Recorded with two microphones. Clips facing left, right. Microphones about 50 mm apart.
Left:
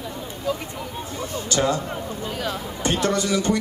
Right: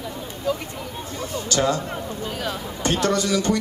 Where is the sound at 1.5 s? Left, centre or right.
Left.